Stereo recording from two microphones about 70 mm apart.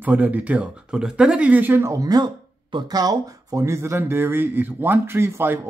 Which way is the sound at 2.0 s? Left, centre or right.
Right.